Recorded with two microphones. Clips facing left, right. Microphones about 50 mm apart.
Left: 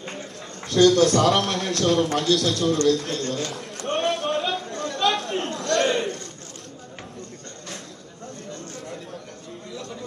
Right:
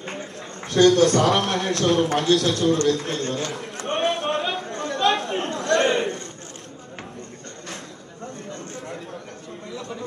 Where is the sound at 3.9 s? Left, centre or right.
Right.